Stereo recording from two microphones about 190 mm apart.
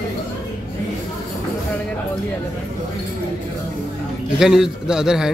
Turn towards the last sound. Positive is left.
turn(degrees=-5)  # may be behind; listen again after turning